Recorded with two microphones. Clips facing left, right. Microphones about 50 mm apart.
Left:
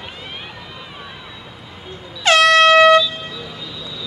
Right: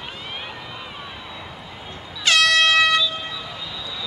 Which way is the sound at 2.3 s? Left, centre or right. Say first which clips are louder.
Left 5 dB; left.